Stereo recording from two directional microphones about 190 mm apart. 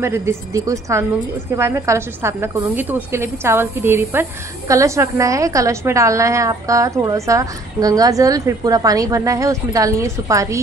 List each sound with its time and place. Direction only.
0.0 s a woman's voice: 15° right (ahead or behind)